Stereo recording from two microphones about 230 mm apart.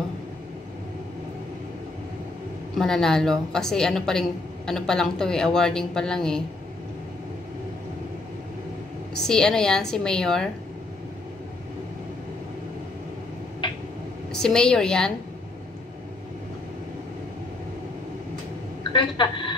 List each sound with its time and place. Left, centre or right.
2.8 s a woman's voice: centre
9.2 s a woman's voice: centre
13.6 s a sound: centre
14.3 s a woman's voice: centre
18.9 s a woman's voice: centre